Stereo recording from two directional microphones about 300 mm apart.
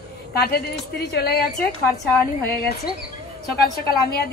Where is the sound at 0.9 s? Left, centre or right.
Left.